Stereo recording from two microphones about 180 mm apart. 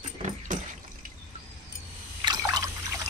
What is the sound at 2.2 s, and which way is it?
Trickle, 20° right (ahead or behind).